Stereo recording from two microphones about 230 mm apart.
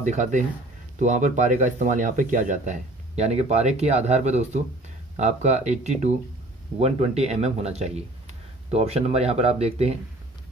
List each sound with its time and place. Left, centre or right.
0.0 s speech: right